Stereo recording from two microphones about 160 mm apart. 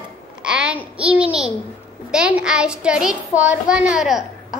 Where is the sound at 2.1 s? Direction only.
5° right (ahead or behind).